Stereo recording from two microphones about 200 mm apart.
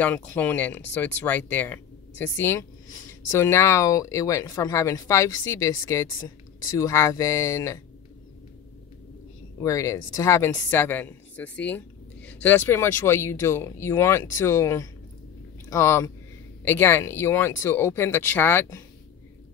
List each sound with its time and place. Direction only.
0.0 s speech: 5° left (ahead or behind)
9.6 s speech: 15° left (ahead or behind)